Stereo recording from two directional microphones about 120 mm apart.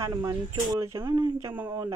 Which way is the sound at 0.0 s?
30° right (ahead or behind).